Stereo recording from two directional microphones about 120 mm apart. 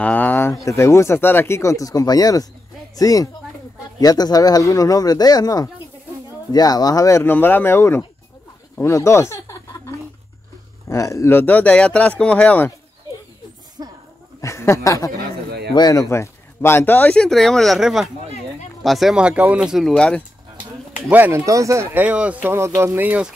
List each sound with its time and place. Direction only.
0.0 s a sound: 15° left (ahead or behind)
0.7 s speech: 25° left (ahead or behind)
14.4 s speech: 20° left (ahead or behind); by 19.9 s 5° right (ahead or behind)
19.9 s speech: 10° left (ahead or behind)
21.1 s speech: 15° right (ahead or behind)
21.5 s speech: 25° right (ahead or behind)
21.9 s speech: 10° right (ahead or behind)